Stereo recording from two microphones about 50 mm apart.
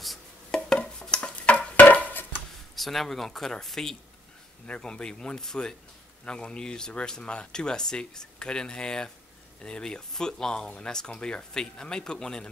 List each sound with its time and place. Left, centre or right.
0.5 s music: centre
1.8 s a sound: left
2.7 s speech: centre
4.6 s speech: left